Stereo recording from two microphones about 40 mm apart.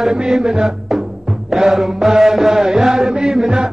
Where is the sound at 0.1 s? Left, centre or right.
Centre.